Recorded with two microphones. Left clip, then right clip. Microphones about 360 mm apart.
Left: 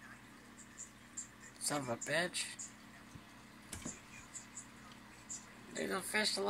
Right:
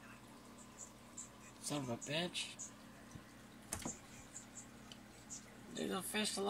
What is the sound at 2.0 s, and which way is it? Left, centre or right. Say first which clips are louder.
Speech: left 5 dB; centre.